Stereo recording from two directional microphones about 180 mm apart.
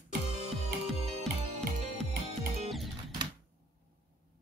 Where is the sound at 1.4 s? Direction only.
35° right (ahead or behind).